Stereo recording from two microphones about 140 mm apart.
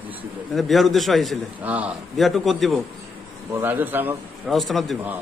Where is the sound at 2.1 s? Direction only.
Centre (ahead or behind).